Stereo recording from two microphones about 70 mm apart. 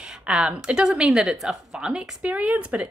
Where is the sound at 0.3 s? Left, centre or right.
Centre.